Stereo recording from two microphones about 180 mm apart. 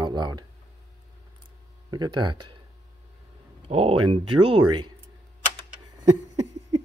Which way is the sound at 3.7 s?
35° right (ahead or behind).